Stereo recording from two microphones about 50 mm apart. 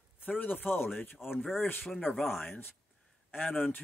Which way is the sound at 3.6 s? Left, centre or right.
Left.